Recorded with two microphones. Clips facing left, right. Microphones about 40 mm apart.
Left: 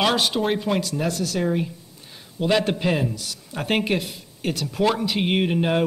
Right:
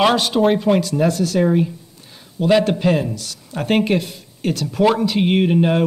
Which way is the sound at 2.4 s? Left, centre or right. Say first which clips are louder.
Right 6 dB; centre.